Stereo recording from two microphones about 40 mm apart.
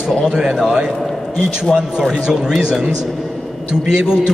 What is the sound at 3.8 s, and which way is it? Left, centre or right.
Speech, centre.